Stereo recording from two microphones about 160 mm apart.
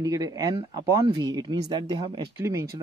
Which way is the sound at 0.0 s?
20° right (ahead or behind).